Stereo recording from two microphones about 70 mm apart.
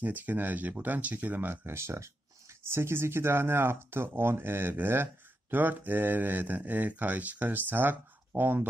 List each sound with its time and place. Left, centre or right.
0.0 s speech: right